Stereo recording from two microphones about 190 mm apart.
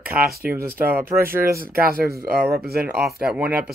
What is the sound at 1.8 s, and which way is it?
Speech, 55° right (ahead or behind).